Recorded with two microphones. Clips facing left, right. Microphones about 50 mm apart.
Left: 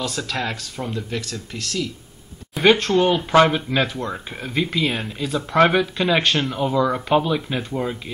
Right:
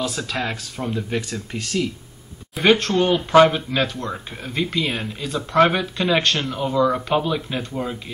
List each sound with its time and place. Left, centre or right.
0.0 s speech: centre
1.1 s speech: centre
2.5 s speech: centre